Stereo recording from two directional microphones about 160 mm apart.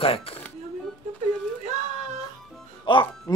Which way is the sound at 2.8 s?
30° left (ahead or behind).